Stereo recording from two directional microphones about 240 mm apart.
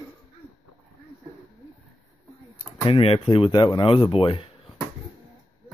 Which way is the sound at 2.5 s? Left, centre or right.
Left.